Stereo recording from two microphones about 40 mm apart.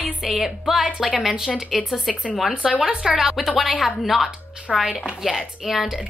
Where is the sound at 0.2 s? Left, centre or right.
Centre.